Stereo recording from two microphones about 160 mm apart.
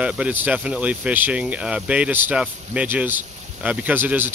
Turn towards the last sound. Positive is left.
turn(degrees=-10)  # may be behind; listen again after turning